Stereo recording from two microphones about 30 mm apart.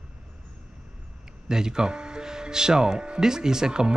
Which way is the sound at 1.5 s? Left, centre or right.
Right.